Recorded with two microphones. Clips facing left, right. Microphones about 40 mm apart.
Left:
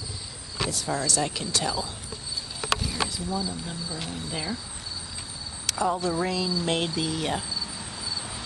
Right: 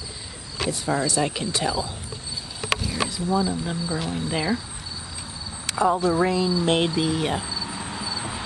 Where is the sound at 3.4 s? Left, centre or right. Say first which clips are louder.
Right 7 dB; right.